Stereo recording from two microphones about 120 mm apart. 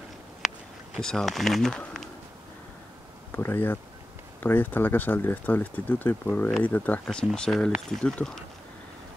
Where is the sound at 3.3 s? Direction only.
20° left (ahead or behind).